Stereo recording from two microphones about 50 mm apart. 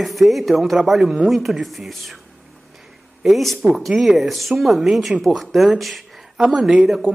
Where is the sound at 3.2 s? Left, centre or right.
Centre.